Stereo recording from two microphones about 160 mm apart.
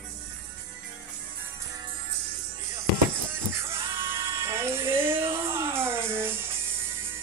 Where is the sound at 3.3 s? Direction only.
15° right (ahead or behind).